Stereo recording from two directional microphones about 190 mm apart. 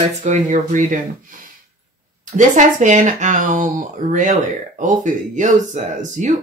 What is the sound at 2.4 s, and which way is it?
Speech, 40° right (ahead or behind).